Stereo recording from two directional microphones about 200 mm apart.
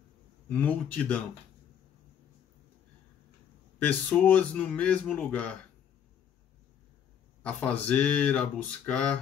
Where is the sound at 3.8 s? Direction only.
10° left (ahead or behind).